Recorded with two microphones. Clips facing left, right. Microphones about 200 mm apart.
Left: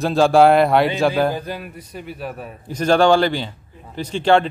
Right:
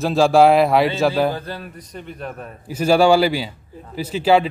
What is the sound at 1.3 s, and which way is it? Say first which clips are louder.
Speech: left 2 dB; 15° left (ahead or behind).